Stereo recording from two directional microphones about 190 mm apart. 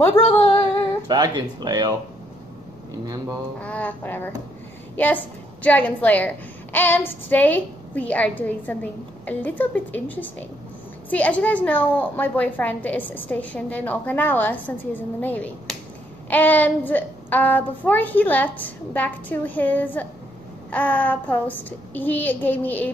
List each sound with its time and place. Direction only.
0.2 s female singing: 20° left (ahead or behind)
1.0 s speech: 20° right (ahead or behind)
3.6 s a woman's voice: 10° left (ahead or behind)